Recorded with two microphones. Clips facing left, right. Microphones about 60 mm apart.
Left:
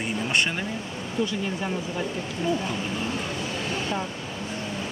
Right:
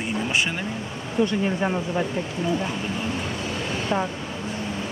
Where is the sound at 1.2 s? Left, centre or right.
Right.